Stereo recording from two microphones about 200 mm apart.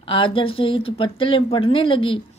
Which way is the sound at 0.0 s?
25° left (ahead or behind).